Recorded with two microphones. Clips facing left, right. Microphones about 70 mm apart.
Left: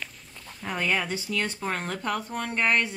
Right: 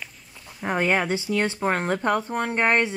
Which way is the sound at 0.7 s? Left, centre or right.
Right.